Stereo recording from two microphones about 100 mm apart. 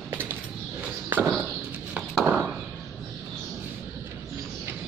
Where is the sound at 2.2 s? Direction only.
10° right (ahead or behind).